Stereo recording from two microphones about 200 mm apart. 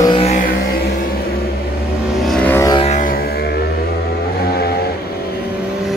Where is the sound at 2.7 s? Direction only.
35° left (ahead or behind).